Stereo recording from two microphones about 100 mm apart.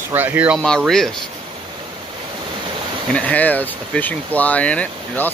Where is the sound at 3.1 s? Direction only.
15° left (ahead or behind).